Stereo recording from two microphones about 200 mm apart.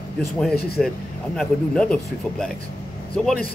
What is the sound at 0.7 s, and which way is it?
A man's voice, centre (ahead or behind).